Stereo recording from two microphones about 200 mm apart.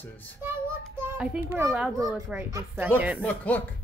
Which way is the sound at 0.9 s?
10° right (ahead or behind).